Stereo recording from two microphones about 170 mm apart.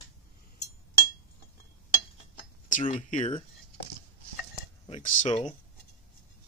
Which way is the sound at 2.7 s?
45° left (ahead or behind).